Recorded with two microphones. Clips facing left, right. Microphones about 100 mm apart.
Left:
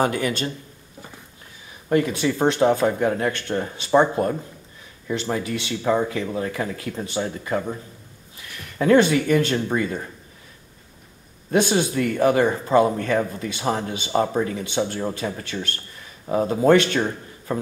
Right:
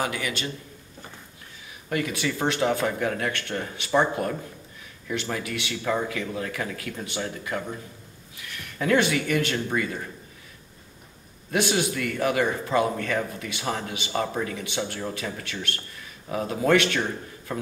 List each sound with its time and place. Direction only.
0.0 s speech: 40° left (ahead or behind)
1.9 s speech: 30° left (ahead or behind)
11.5 s speech: 35° left (ahead or behind)